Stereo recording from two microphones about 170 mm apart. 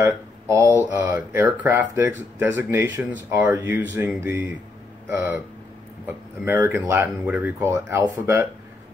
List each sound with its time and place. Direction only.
0.0 s speech: 15° right (ahead or behind)